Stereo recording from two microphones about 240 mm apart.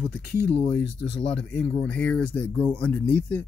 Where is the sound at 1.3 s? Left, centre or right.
Centre.